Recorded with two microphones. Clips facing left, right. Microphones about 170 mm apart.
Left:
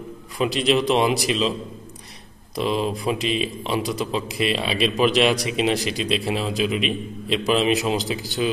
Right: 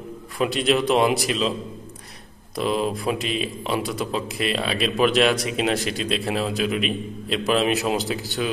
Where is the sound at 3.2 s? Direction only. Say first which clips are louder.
Left 3 dB; 45° right (ahead or behind).